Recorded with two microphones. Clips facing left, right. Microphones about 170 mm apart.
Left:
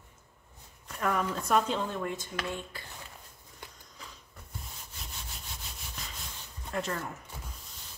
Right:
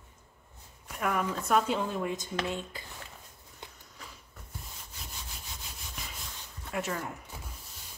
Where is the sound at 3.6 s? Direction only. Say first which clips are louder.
Right 1 dB; 20° right (ahead or behind).